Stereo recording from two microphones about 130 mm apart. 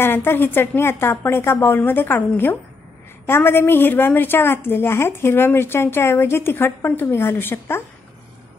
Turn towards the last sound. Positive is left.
turn(degrees=15)  # may be behind; listen again after turning